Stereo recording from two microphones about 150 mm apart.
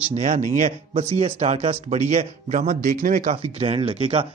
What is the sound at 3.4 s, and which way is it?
Speech, 40° right (ahead or behind).